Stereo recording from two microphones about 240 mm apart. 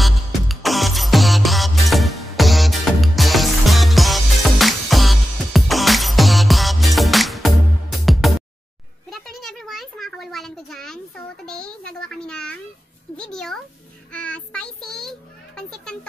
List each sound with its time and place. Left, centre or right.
0.0 s music: centre
9.1 s a sound: centre
14.1 s child singing: centre